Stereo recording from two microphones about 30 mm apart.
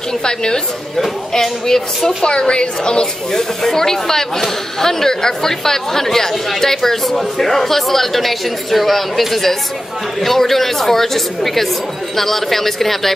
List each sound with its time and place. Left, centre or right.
0.2 s speech: left
2.2 s a woman's voice: left
3.3 s speech: centre